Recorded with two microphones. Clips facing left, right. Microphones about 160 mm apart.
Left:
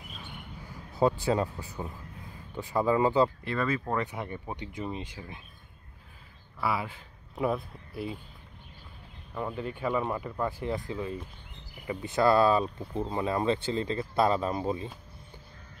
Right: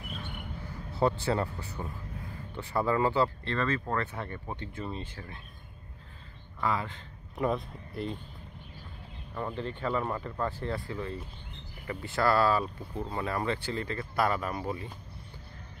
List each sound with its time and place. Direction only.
0.9 s speech: 15° left (ahead or behind)
6.6 s speech: 10° left (ahead or behind)
9.3 s speech: 5° left (ahead or behind); by 14.9 s 20° left (ahead or behind)